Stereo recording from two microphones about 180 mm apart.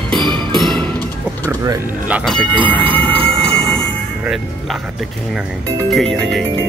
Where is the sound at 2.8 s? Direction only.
30° right (ahead or behind).